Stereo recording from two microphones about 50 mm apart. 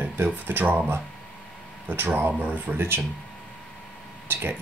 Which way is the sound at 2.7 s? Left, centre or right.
Right.